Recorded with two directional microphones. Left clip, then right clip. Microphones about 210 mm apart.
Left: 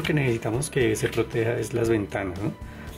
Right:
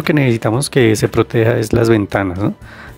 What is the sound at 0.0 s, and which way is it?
Speech, 50° right (ahead or behind).